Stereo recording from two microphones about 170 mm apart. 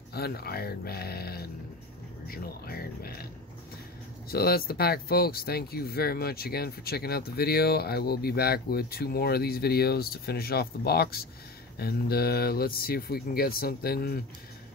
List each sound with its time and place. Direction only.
0.1 s speech: 65° left (ahead or behind)
4.3 s speech: 65° left (ahead or behind)